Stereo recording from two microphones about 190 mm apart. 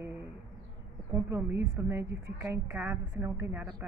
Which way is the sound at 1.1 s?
15° right (ahead or behind).